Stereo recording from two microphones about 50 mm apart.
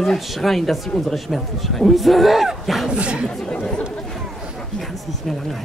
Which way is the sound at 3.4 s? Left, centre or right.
Centre.